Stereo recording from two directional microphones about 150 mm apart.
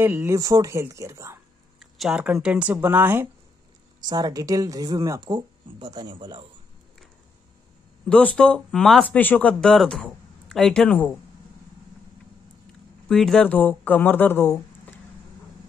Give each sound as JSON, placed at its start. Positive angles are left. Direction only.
{"t": 0.0, "sound": "speech", "side_deg": -15}
{"t": 1.8, "sound": "a sound", "side_deg": 0}
{"t": 2.4, "sound": "speech", "side_deg": -10}
{"t": 4.0, "sound": "speech", "side_deg": -25}
{"t": 8.1, "sound": "speech", "side_deg": 10}
{"t": 13.1, "sound": "speech", "side_deg": 5}